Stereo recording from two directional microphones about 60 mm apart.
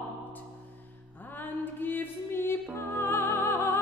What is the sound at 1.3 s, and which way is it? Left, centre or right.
Music, left.